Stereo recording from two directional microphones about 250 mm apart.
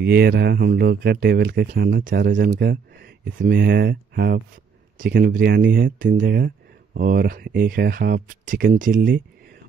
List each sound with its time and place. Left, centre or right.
0.0 s speech: right